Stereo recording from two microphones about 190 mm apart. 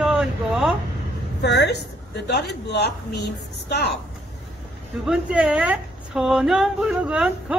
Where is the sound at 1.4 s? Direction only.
65° left (ahead or behind).